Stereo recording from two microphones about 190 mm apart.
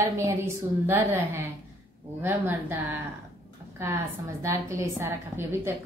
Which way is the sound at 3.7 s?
15° right (ahead or behind).